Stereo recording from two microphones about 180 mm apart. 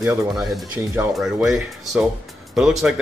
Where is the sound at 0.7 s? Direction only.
10° right (ahead or behind).